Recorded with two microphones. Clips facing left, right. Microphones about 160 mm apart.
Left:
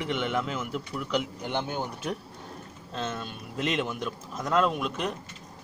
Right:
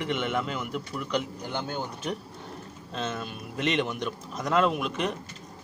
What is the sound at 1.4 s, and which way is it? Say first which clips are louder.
Speech: left 2 dB; 20° left (ahead or behind).